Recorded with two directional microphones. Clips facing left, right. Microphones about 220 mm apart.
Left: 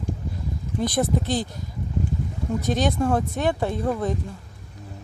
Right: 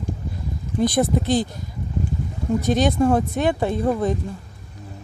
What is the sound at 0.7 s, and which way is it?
Speech, 15° right (ahead or behind).